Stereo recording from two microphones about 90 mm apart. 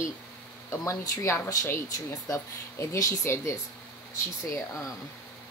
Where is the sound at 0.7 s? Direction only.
35° left (ahead or behind).